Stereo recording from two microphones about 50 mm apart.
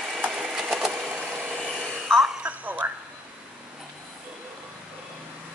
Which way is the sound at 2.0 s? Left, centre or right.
Centre.